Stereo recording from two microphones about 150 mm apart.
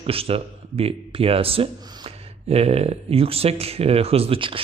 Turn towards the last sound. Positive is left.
turn(degrees=-40)  # may be behind; listen again after turning